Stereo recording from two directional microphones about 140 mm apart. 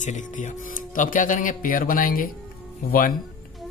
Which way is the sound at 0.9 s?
70° left (ahead or behind).